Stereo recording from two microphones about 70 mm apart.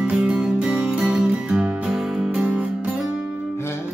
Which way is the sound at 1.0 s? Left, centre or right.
Centre.